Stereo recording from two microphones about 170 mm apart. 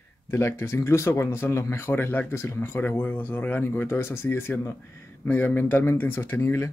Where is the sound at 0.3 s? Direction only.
15° left (ahead or behind).